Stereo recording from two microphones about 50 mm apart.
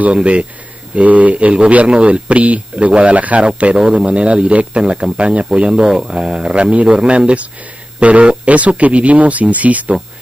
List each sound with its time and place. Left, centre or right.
0.0 s speech: right
3.7 s speech: centre; by 9.9 s right